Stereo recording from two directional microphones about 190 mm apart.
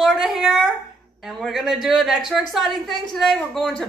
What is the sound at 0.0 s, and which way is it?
A woman's voice, centre (ahead or behind).